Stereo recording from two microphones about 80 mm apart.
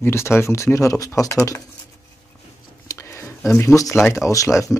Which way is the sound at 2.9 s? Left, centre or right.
Left.